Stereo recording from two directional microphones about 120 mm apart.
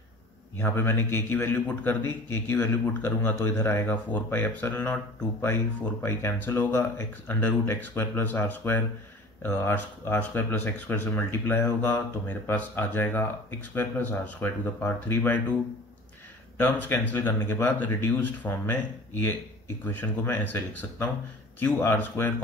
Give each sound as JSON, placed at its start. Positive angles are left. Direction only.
{"t": 0.6, "sound": "a man's voice", "side_deg": 20}
{"t": 16.5, "sound": "a man's voice", "side_deg": 20}
{"t": 19.8, "sound": "a man's voice", "side_deg": 15}